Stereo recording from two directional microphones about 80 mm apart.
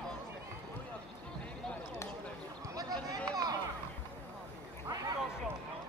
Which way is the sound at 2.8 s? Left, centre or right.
Right.